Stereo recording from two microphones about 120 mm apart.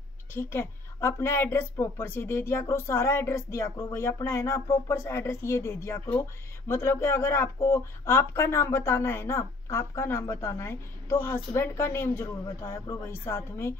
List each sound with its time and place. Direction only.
0.3 s speech: 20° left (ahead or behind)